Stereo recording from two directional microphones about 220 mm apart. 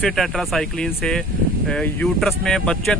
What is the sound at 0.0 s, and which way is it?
Speech, centre (ahead or behind).